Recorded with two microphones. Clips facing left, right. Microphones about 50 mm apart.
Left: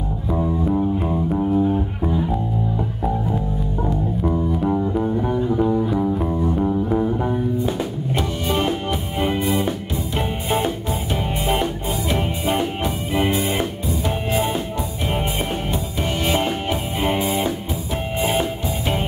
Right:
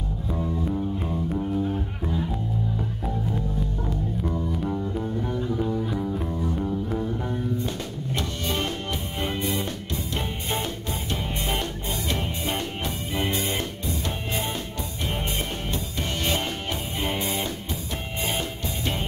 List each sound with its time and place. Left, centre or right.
0.3 s music: centre
15.7 s music: centre